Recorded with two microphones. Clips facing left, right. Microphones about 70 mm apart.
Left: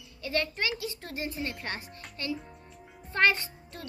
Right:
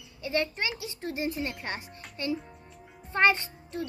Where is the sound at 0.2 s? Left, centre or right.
Right.